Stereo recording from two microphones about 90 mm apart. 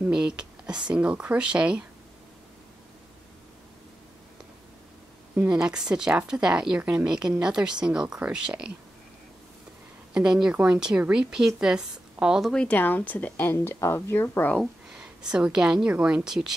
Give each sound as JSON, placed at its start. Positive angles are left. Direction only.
{"t": 0.0, "sound": "a sound", "side_deg": -10}
{"t": 0.8, "sound": "a woman's voice", "side_deg": -10}
{"t": 5.5, "sound": "a woman's voice", "side_deg": -5}
{"t": 10.1, "sound": "a woman's voice", "side_deg": -5}
{"t": 12.5, "sound": "speech", "side_deg": 15}
{"t": 14.6, "sound": "a woman's voice", "side_deg": -5}